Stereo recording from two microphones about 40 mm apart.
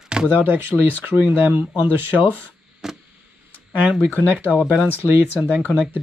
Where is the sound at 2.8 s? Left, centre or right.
Centre.